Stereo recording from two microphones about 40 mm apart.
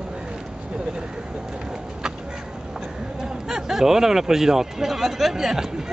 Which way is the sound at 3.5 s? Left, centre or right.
Centre.